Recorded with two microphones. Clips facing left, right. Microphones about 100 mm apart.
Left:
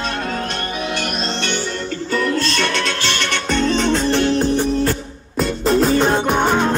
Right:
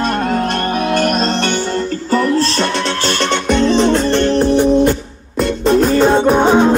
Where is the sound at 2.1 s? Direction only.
35° right (ahead or behind).